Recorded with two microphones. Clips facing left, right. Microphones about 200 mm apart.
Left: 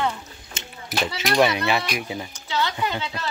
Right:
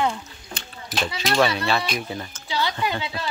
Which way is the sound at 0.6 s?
20° left (ahead or behind).